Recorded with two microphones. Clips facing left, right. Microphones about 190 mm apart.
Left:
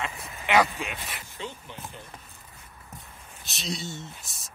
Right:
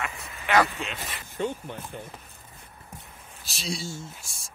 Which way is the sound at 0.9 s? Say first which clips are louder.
Right 5 dB; 50° right (ahead or behind).